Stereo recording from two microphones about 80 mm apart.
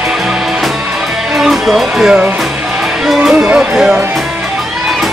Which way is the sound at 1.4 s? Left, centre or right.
Centre.